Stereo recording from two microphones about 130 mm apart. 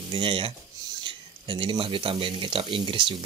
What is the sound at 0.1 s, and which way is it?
Speech, 40° right (ahead or behind).